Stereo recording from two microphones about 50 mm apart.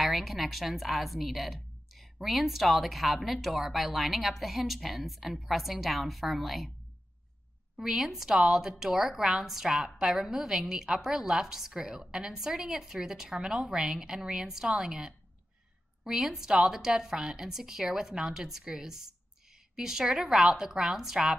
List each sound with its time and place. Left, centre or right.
0.0 s a woman's voice: centre
7.7 s a woman's voice: centre